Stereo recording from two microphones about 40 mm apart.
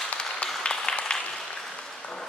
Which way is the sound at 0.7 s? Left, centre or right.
Left.